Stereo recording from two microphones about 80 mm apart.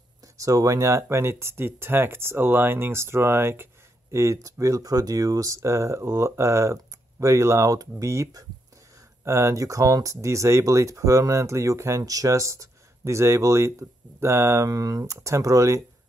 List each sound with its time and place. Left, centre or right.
0.4 s speech: right